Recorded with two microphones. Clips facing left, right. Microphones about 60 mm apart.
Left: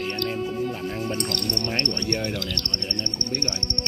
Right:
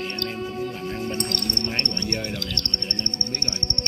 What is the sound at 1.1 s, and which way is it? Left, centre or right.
Speech, right.